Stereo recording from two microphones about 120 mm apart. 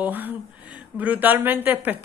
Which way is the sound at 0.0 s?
15° right (ahead or behind).